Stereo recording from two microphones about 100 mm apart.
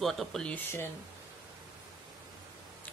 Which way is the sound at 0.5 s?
25° left (ahead or behind).